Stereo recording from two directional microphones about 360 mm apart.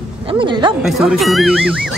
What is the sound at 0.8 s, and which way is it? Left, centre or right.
Speech, centre.